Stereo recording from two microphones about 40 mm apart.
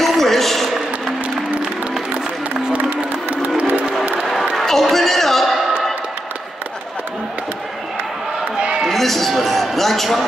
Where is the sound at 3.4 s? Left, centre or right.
Right.